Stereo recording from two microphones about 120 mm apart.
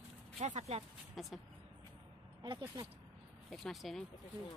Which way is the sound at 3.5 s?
5° left (ahead or behind).